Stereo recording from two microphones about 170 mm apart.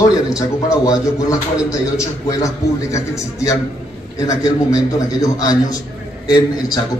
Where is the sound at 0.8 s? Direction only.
20° left (ahead or behind).